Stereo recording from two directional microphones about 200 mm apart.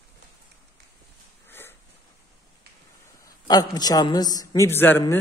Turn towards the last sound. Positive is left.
turn(degrees=10)  # may be behind; listen again after turning